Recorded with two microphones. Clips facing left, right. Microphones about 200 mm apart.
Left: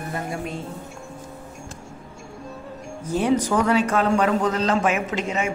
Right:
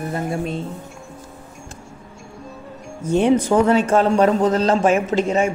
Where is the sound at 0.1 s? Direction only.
30° right (ahead or behind).